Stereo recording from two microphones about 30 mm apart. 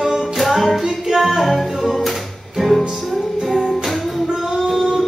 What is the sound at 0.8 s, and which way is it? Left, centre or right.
Music, centre.